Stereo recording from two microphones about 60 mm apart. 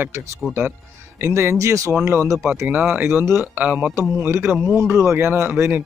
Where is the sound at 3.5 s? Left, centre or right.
Right.